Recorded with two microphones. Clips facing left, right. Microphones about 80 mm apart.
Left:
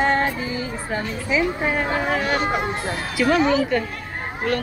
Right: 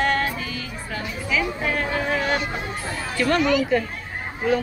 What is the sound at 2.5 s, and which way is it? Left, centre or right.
Speech, left.